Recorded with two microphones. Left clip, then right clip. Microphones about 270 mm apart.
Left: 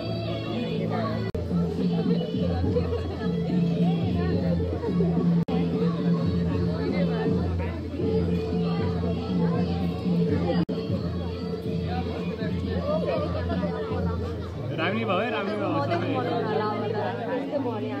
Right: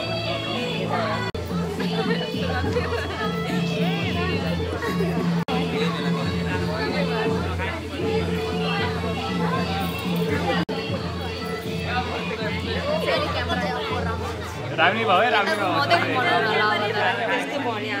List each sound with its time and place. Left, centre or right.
14.8 s speech: centre
15.8 s chatter: right